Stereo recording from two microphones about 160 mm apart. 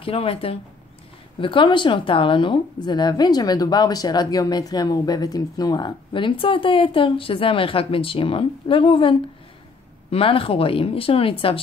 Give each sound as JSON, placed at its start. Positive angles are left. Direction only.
{"t": 0.0, "sound": "a woman's voice", "side_deg": 35}